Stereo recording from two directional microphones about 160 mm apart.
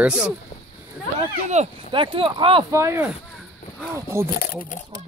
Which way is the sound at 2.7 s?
20° right (ahead or behind).